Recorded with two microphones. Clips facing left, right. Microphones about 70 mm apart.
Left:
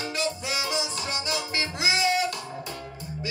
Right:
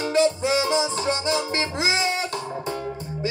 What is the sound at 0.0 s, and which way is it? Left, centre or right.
Music, right.